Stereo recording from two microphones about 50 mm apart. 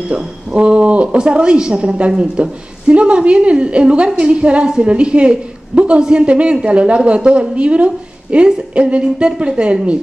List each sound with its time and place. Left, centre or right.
0.1 s speech: right